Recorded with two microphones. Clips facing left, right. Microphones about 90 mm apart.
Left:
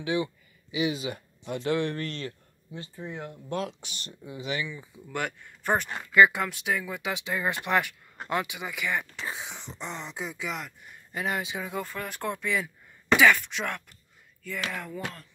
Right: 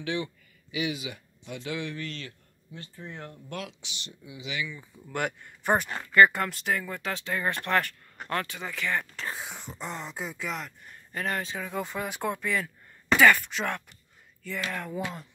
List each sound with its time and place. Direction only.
0.0 s speech: 20° left (ahead or behind); by 2.3 s 40° left (ahead or behind)
2.7 s speech: 20° left (ahead or behind)
3.4 s speech: 30° left (ahead or behind)
3.8 s speech: 45° left (ahead or behind)
4.6 s speech: 15° left (ahead or behind)
5.0 s speech: centre (ahead or behind)
5.9 s speech: 5° left (ahead or behind)
11.8 s speech: 15° right (ahead or behind)